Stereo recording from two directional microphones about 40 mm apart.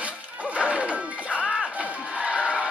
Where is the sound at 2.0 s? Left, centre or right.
Right.